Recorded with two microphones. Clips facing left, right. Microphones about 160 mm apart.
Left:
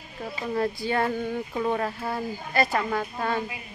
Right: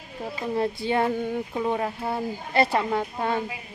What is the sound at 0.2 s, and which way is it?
Speech, 20° right (ahead or behind).